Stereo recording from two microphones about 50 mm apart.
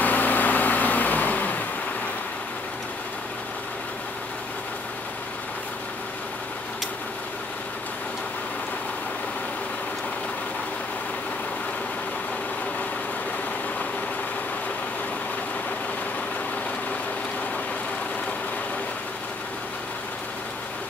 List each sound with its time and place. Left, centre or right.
0.0 s vehicle: left